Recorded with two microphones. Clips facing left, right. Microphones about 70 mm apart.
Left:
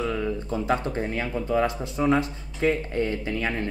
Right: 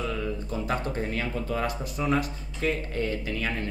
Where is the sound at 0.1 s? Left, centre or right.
Left.